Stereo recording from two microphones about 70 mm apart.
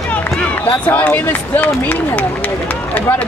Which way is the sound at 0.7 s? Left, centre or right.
Left.